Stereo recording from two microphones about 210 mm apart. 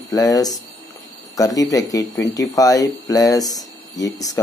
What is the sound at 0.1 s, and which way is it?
Speech, 15° left (ahead or behind).